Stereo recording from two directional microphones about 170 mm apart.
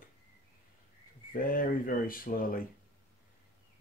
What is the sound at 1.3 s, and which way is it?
Speech, 55° left (ahead or behind).